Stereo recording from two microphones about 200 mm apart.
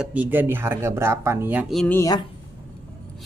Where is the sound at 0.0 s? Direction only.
5° right (ahead or behind).